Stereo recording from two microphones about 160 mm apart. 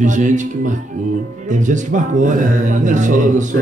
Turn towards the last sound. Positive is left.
turn(degrees=-50)  # may be behind; listen again after turning